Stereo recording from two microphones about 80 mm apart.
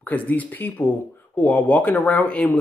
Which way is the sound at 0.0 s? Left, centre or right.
Centre.